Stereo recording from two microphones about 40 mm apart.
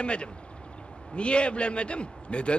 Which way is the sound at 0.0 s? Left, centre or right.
Left.